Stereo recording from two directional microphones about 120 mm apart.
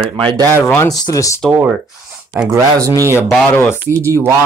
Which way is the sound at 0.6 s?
20° left (ahead or behind).